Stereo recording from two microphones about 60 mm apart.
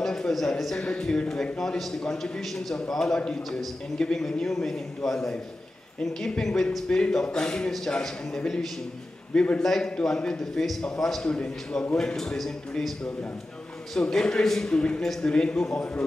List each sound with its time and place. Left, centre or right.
0.0 s a man's voice: centre
11.2 s a man's voice: centre